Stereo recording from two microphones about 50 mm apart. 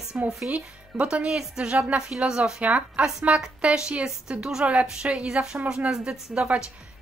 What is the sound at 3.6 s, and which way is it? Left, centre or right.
A woman's voice, centre.